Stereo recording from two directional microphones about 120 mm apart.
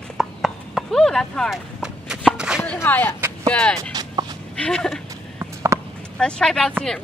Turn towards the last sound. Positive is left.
turn(degrees=5)  # may be behind; listen again after turning